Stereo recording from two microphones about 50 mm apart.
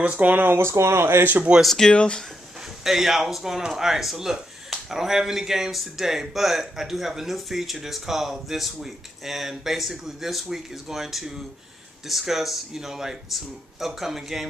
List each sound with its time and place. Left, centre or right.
0.0 s speech: right
0.3 s speech: right
0.6 s speech: right
1.6 s speech: centre
1.9 s speech: centre
2.8 s speech: centre